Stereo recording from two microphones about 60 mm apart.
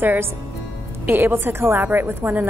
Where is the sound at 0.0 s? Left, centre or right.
Right.